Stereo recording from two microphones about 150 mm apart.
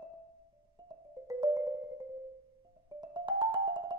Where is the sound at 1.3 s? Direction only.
25° right (ahead or behind).